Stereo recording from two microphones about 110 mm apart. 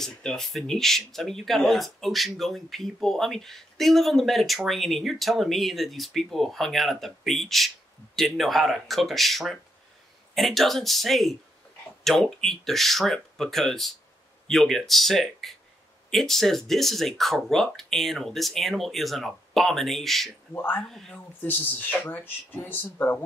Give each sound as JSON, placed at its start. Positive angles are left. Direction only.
{"t": 0.0, "sound": "speech", "side_deg": 5}
{"t": 20.5, "sound": "speech", "side_deg": 20}
{"t": 20.9, "sound": "speech", "side_deg": 5}
{"t": 21.4, "sound": "speech", "side_deg": 15}